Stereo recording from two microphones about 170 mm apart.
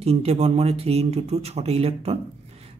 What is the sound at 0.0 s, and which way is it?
Speech, 35° right (ahead or behind).